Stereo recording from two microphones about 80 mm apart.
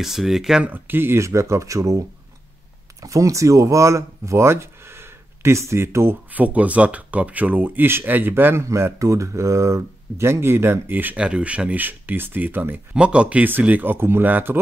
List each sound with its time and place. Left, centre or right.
0.0 s speech: centre
0.7 s speech: right
6.3 s speech: centre
8.6 s speech: right
12.9 s speech: centre